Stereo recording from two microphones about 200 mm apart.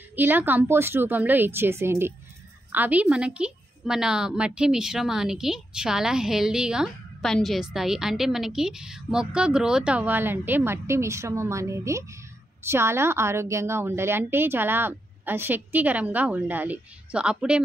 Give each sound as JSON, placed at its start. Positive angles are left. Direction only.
{"t": 0.1, "sound": "a woman's voice", "side_deg": -10}